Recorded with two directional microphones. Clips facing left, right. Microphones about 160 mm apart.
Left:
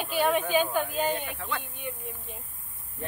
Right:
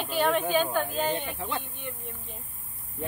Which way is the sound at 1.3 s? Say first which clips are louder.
Right 2 dB; 15° right (ahead or behind).